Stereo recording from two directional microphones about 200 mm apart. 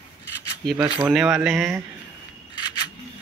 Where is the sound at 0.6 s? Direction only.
10° right (ahead or behind).